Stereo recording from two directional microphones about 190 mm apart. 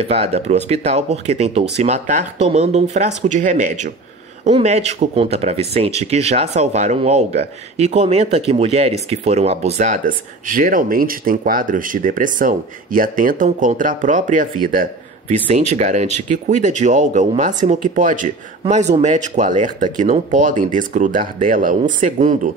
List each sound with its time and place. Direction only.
0.0 s speech: 30° right (ahead or behind)
15.8 s speech: 35° right (ahead or behind)